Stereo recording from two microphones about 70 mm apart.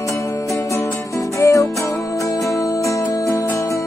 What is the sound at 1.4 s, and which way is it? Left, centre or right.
Music, left.